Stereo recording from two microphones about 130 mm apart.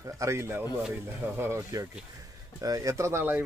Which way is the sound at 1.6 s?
30° right (ahead or behind).